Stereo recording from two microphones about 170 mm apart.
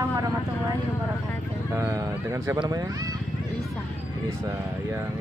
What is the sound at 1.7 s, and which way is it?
Speech, 20° right (ahead or behind).